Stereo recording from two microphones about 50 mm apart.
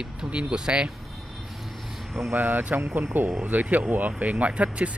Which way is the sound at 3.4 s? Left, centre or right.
Right.